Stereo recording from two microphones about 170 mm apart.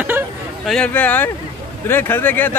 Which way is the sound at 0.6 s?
5° left (ahead or behind).